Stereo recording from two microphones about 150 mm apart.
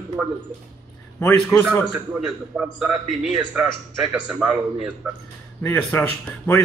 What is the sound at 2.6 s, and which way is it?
A man's voice, 10° right (ahead or behind).